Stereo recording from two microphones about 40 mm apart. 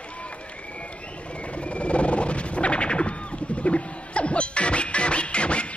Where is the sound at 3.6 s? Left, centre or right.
Left.